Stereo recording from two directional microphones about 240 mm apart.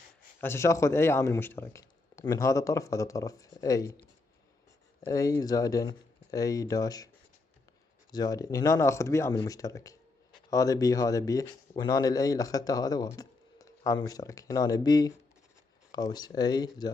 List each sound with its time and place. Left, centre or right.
0.4 s a man's voice: centre
5.0 s a man's voice: centre
8.1 s a man's voice: centre